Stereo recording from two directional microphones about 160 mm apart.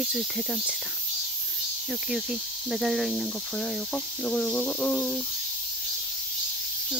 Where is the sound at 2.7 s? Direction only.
Centre (ahead or behind).